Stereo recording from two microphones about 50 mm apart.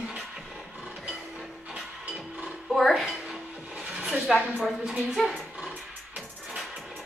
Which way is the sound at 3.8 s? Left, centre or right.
Right.